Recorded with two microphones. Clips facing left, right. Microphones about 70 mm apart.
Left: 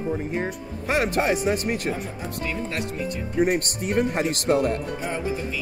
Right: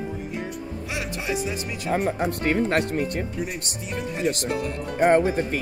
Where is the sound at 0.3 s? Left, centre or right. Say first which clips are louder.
Left 3 dB; left.